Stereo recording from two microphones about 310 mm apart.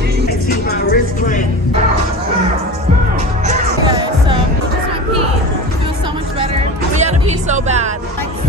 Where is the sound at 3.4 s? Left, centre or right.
Centre.